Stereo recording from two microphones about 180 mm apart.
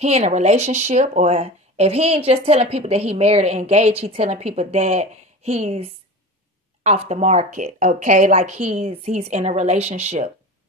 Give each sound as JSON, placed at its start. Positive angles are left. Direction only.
{"t": 0.0, "sound": "speech", "side_deg": -40}